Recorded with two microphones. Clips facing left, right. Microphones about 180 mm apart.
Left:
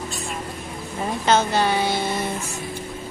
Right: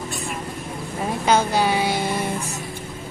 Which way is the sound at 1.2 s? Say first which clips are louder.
Even; 10° right (ahead or behind).